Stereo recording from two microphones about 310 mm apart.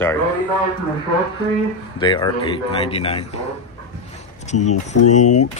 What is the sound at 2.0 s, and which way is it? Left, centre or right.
Speech, centre.